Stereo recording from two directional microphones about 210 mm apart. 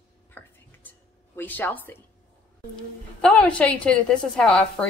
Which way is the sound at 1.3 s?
10° left (ahead or behind).